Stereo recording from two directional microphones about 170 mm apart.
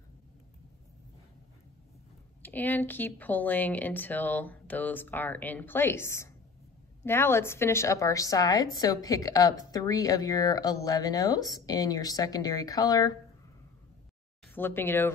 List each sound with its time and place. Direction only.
2.4 s a woman's voice: 10° left (ahead or behind)
14.5 s speech: 10° left (ahead or behind)